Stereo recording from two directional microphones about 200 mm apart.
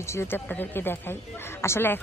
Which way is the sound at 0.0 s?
15° left (ahead or behind).